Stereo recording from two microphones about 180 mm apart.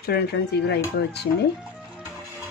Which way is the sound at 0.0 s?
60° left (ahead or behind).